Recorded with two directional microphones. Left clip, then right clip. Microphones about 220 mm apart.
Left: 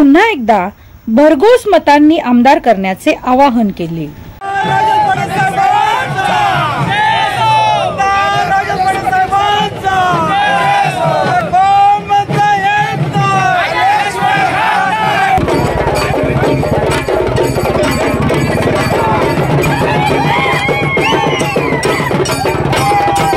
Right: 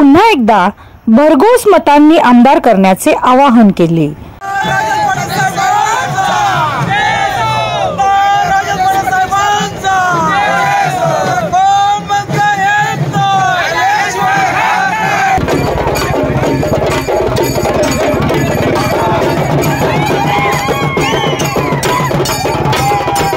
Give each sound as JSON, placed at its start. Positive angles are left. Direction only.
{"t": 0.1, "sound": "a woman's voice", "side_deg": -25}